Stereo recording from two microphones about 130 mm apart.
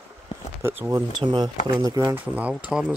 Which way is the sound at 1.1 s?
35° right (ahead or behind).